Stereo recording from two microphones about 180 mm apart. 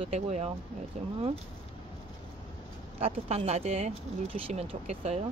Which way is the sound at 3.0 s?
35° right (ahead or behind).